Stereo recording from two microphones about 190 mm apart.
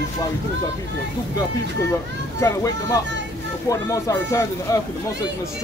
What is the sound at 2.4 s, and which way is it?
Speech, 15° left (ahead or behind).